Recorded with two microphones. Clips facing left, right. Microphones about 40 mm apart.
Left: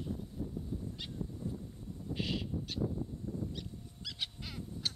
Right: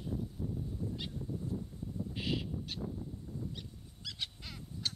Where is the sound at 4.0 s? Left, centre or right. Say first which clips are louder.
Even; centre.